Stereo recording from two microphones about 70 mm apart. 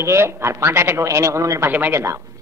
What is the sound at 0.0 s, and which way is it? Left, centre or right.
A woman's voice, right.